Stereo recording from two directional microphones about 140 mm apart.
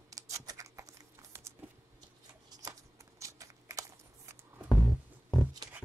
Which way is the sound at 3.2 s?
25° right (ahead or behind).